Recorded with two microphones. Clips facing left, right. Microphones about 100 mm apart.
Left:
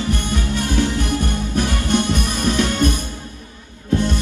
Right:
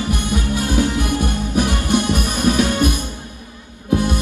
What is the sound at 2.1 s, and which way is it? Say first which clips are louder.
Music: right 2 dB; 15° right (ahead or behind).